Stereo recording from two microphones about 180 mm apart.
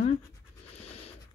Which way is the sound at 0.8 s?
35° left (ahead or behind).